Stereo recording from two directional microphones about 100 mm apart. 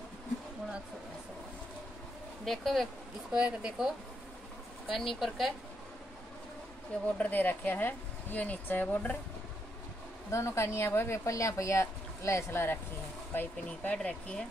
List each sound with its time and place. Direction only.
2.4 s speech: centre (ahead or behind)
3.3 s a woman's voice: 10° right (ahead or behind)
7.2 s speech: 15° left (ahead or behind)
10.3 s speech: 30° left (ahead or behind); by 14.4 s 10° left (ahead or behind)